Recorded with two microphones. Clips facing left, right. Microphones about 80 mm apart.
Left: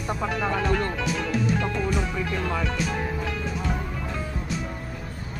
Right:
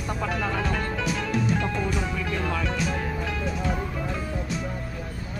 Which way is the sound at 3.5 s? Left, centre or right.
Centre.